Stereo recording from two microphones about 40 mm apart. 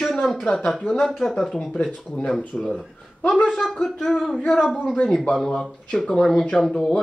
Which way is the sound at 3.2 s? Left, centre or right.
Left.